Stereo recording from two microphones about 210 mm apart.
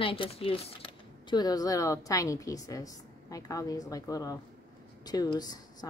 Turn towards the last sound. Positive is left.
turn(degrees=20)  # may be behind; listen again after turning